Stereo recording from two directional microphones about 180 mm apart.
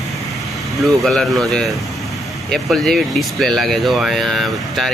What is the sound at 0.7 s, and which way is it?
Speech, centre (ahead or behind).